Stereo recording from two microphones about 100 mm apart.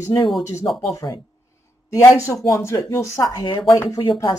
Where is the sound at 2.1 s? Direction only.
30° left (ahead or behind).